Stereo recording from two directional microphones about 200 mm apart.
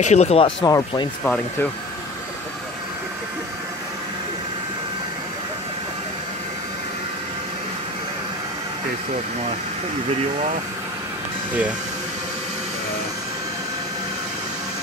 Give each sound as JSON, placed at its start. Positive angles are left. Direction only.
{"t": 0.0, "sound": "speech", "side_deg": 35}
{"t": 1.2, "sound": "speech", "side_deg": 5}